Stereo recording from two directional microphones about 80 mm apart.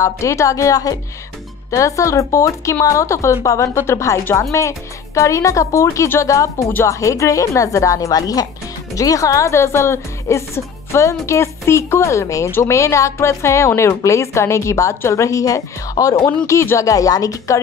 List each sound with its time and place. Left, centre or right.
0.0 s a woman's voice: left